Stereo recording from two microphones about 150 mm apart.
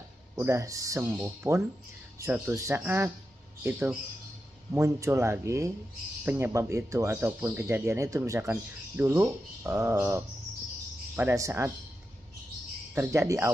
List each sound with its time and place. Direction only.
0.4 s speech: 20° right (ahead or behind)
12.9 s speech: 15° right (ahead or behind)